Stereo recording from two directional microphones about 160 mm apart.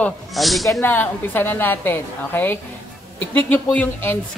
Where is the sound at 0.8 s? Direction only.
10° left (ahead or behind).